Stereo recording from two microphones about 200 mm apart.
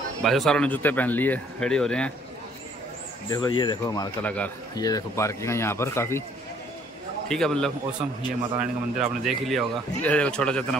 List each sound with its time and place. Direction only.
0.2 s speech: centre (ahead or behind)
3.3 s speech: 20° left (ahead or behind)
7.2 s speech: 5° left (ahead or behind)